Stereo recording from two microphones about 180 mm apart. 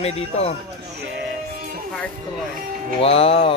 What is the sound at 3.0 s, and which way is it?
Speech, 30° left (ahead or behind).